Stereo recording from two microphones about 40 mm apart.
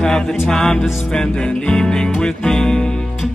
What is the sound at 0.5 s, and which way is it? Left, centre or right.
Music, centre.